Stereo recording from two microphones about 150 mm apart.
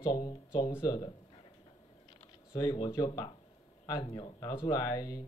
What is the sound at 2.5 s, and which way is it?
Speech, 25° left (ahead or behind).